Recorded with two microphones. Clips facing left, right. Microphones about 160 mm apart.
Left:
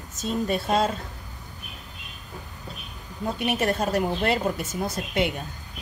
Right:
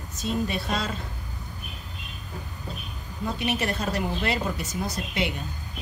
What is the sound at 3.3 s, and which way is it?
Speech, 50° left (ahead or behind).